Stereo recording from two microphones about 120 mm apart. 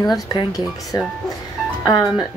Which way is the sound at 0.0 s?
35° left (ahead or behind).